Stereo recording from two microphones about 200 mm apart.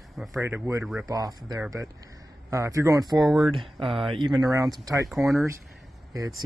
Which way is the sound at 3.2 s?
Centre (ahead or behind).